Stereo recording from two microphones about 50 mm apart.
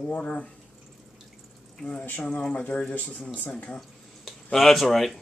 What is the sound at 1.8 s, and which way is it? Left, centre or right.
A woman's voice, left.